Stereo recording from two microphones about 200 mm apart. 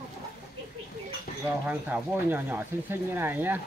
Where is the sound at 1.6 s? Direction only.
10° right (ahead or behind).